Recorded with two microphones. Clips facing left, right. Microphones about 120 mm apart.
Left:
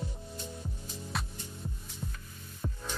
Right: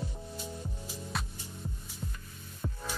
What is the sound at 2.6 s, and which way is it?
Music, centre (ahead or behind).